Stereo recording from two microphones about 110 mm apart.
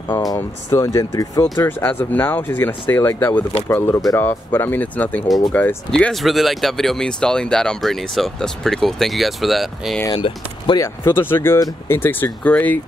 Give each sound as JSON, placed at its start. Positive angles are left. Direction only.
{"t": 0.3, "sound": "speech", "side_deg": 30}
{"t": 1.7, "sound": "speech", "side_deg": 20}
{"t": 10.1, "sound": "speech", "side_deg": 55}
{"t": 10.8, "sound": "speech", "side_deg": 20}